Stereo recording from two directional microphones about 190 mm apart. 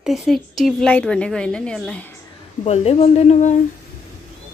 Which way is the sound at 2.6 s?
35° left (ahead or behind).